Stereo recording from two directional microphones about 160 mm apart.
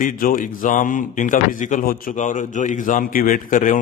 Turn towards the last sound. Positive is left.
turn(degrees=55)  # may be behind; listen again after turning